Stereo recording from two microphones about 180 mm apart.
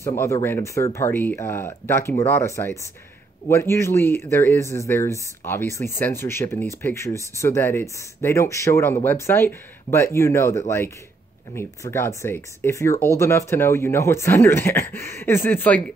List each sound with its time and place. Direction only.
0.0 s speech: 15° left (ahead or behind)